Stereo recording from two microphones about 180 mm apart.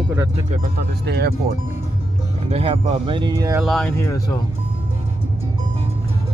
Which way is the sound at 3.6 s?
Centre (ahead or behind).